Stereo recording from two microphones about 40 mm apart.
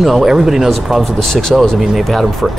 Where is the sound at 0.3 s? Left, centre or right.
Centre.